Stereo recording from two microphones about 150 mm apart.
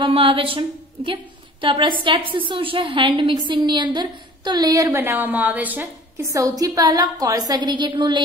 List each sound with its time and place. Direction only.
0.0 s a woman's voice: 40° right (ahead or behind)